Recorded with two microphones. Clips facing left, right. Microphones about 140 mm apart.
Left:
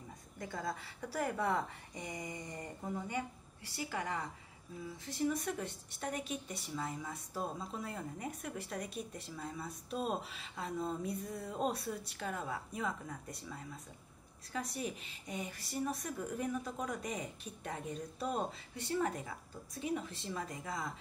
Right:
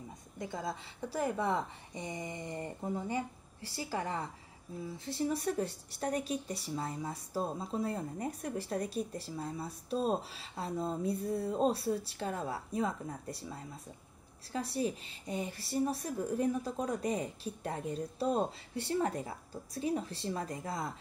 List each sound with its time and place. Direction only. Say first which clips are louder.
0.4 s a woman's voice: right 2 dB; 20° right (ahead or behind)